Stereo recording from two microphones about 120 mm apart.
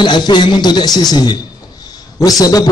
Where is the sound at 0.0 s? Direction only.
40° left (ahead or behind).